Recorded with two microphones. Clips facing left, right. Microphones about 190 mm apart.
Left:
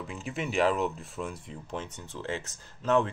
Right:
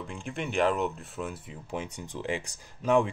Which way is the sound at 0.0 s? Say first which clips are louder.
Even; centre (ahead or behind).